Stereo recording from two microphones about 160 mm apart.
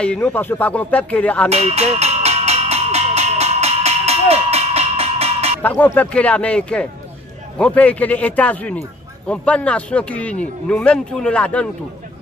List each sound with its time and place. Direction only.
0.0 s a man's voice: 5° left (ahead or behind)
1.5 s a sound: 40° right (ahead or behind)
5.6 s a man's voice: 10° left (ahead or behind)